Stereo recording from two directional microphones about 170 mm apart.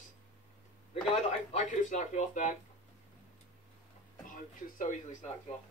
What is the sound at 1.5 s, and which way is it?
Speech, 45° left (ahead or behind).